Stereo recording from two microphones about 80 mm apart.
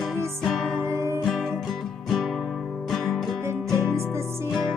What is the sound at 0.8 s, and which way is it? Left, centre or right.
Music, right.